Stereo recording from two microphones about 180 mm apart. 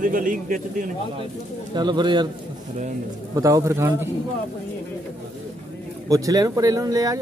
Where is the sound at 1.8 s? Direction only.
25° right (ahead or behind).